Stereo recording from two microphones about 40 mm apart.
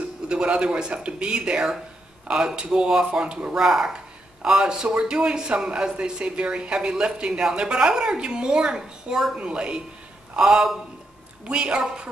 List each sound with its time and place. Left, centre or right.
0.3 s speech: right
3.5 s speech: centre
9.4 s speech: right